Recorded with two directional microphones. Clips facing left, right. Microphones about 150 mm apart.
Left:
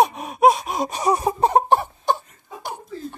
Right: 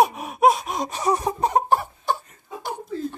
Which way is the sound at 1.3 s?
30° left (ahead or behind).